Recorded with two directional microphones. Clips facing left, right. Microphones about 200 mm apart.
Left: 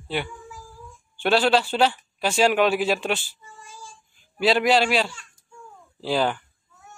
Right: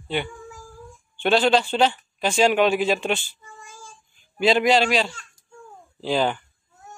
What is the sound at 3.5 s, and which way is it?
Child singing, 45° right (ahead or behind).